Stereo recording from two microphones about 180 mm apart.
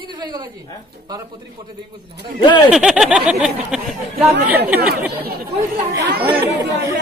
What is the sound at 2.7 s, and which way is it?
Speech, 5° right (ahead or behind).